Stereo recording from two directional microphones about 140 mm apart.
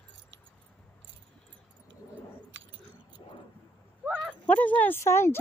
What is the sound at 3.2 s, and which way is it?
Vehicle, 35° left (ahead or behind).